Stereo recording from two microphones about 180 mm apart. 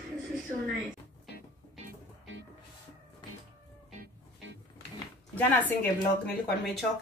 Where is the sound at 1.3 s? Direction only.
70° left (ahead or behind).